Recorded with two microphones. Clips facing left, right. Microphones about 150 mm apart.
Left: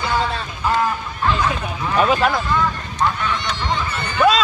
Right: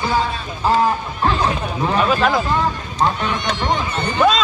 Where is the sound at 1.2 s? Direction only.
30° right (ahead or behind).